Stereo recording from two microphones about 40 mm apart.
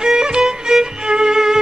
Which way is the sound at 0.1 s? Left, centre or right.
Centre.